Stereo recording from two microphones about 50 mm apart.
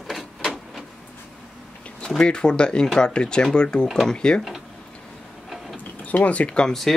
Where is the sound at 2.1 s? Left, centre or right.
Centre.